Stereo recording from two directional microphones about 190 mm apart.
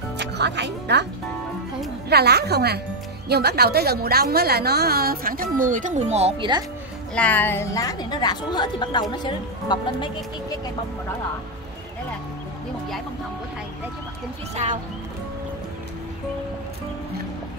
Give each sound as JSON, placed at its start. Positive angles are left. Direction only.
{"t": 0.2, "sound": "speech", "side_deg": -65}
{"t": 2.0, "sound": "a woman's voice", "side_deg": -60}
{"t": 7.2, "sound": "speech", "side_deg": 10}
{"t": 14.5, "sound": "speech", "side_deg": -35}